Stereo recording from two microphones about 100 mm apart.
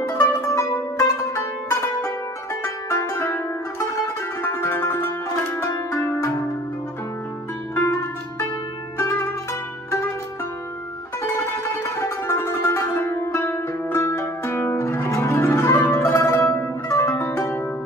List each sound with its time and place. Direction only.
0.5 s music: 30° left (ahead or behind)
4.4 s music: 25° left (ahead or behind)
7.7 s music: 30° left (ahead or behind)
12.0 s music: 30° left (ahead or behind)
15.9 s zither: 30° left (ahead or behind)
16.9 s music: 30° left (ahead or behind)